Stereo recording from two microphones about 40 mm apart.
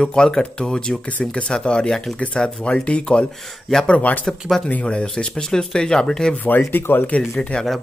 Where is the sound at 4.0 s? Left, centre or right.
Left.